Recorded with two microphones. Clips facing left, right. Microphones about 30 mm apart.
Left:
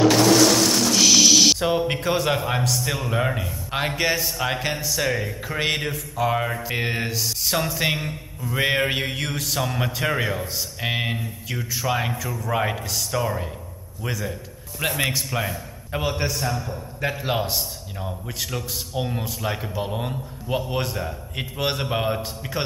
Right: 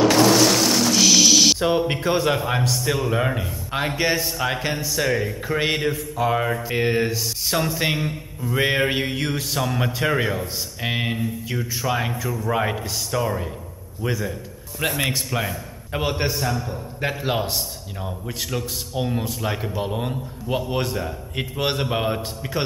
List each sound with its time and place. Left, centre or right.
0.0 s a sound: centre
2.6 s a man's voice: centre
16.0 s a man's voice: centre
16.3 s a man's voice: centre